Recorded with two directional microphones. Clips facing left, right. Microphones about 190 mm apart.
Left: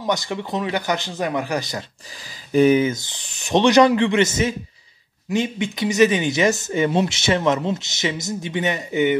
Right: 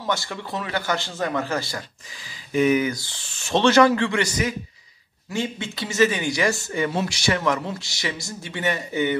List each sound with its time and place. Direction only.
0.0 s speech: 20° left (ahead or behind)
2.5 s speech: 30° left (ahead or behind)